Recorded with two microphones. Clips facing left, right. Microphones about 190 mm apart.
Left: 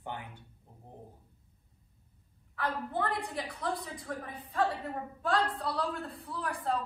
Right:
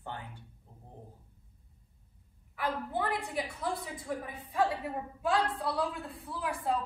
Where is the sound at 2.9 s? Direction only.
5° right (ahead or behind).